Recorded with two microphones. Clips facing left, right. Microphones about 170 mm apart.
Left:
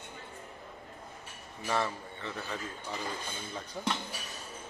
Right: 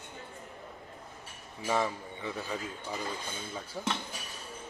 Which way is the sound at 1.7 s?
15° right (ahead or behind).